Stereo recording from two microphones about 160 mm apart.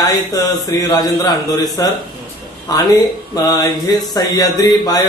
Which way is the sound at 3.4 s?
20° left (ahead or behind).